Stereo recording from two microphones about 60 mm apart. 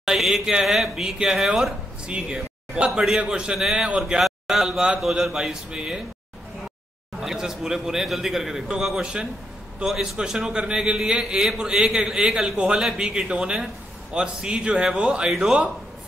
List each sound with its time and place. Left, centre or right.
0.0 s a man's voice: centre
7.2 s a man's voice: centre